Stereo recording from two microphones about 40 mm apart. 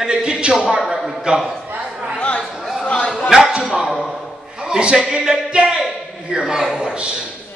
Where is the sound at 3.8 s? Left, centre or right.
Centre.